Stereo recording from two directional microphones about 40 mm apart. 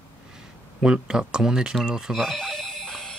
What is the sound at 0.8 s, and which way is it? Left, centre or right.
Speech, centre.